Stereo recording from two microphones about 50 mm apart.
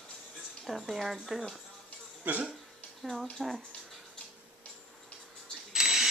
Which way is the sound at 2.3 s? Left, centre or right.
Right.